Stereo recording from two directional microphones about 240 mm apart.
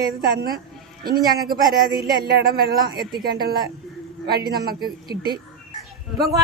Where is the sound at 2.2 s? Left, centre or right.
Right.